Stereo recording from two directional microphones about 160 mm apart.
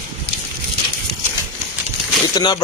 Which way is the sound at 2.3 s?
25° left (ahead or behind).